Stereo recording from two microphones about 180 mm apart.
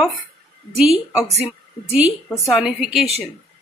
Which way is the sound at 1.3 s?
35° left (ahead or behind).